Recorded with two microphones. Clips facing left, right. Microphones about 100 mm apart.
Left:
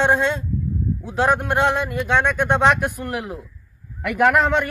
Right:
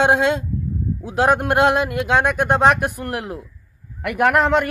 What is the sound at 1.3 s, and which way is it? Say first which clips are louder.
Speech: right 3 dB; 65° right (ahead or behind).